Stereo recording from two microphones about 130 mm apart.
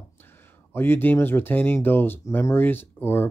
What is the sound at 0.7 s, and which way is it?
Speech, 15° left (ahead or behind).